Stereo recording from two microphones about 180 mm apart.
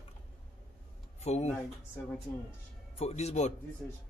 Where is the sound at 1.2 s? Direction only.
35° left (ahead or behind).